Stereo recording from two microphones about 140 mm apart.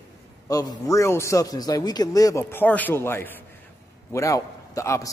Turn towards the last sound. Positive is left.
turn(degrees=20)  # may be behind; listen again after turning